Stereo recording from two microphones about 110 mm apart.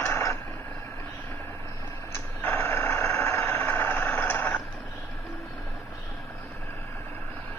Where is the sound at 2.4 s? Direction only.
15° left (ahead or behind).